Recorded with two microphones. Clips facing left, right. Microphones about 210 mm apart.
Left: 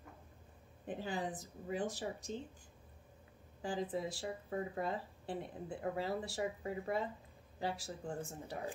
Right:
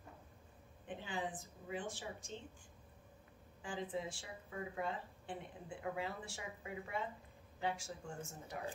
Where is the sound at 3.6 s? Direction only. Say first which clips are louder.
Left 4 dB; 40° left (ahead or behind).